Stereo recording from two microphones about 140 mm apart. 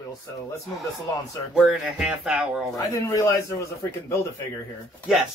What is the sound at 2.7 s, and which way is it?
Speech, 20° left (ahead or behind).